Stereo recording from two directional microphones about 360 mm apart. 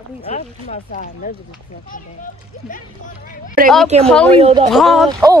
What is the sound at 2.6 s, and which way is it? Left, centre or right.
Speech, left.